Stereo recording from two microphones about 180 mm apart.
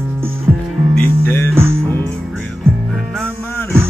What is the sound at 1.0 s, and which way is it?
Music, 10° left (ahead or behind).